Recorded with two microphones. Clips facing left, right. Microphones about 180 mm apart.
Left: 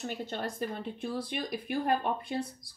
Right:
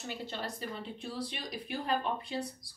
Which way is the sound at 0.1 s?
50° left (ahead or behind).